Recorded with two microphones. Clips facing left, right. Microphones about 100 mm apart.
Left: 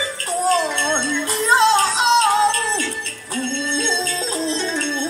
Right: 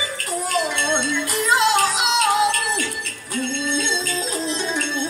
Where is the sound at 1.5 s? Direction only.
30° left (ahead or behind).